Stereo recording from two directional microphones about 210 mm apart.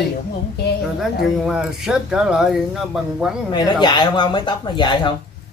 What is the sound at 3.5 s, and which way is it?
Speech, 20° left (ahead or behind).